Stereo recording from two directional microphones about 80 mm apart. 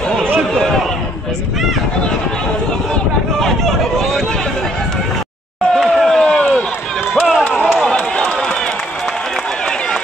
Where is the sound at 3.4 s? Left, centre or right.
Centre.